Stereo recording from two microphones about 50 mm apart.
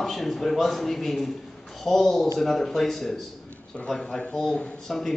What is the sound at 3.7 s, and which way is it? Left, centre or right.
Speech, left.